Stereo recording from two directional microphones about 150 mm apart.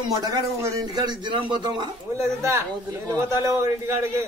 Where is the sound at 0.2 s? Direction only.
20° right (ahead or behind).